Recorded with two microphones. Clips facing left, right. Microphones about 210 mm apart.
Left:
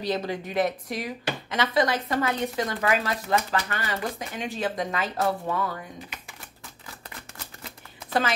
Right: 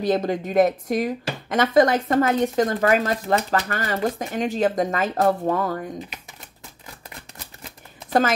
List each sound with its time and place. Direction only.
0.0 s speech: 50° right (ahead or behind)